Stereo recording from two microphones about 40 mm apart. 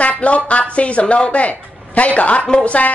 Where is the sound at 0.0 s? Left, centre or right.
Left.